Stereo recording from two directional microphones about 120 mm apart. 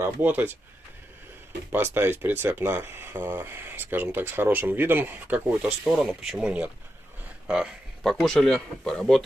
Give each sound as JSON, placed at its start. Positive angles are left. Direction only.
{"t": 0.0, "sound": "speech", "side_deg": -15}
{"t": 1.7, "sound": "speech", "side_deg": -15}
{"t": 5.9, "sound": "speech", "side_deg": 0}